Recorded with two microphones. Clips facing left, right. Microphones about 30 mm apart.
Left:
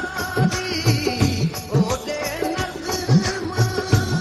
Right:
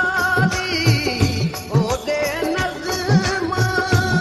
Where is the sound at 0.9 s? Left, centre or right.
Right.